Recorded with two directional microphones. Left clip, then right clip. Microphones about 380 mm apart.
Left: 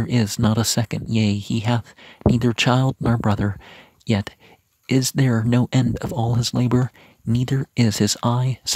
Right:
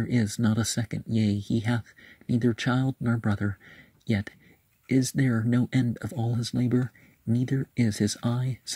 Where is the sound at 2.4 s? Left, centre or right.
Left.